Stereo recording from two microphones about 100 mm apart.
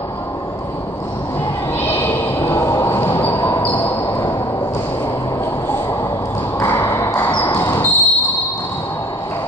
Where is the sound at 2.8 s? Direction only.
20° left (ahead or behind).